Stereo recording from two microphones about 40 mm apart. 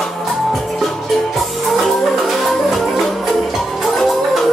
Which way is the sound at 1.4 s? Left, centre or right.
Centre.